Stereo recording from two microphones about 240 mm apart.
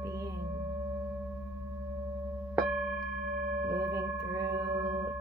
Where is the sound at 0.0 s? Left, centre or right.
Centre.